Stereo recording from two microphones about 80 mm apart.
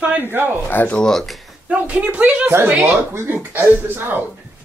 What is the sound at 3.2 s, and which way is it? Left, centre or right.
Speech, right.